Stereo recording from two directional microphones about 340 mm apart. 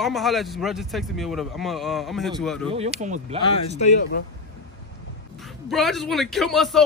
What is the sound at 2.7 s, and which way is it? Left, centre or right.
Speech, centre.